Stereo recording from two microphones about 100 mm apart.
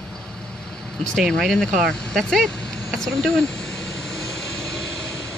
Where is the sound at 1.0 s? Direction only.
5° left (ahead or behind).